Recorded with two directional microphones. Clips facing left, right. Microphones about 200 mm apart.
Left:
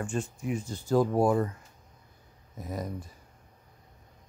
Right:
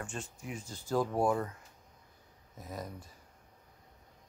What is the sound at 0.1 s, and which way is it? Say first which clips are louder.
Speech: left 10 dB; 50° left (ahead or behind).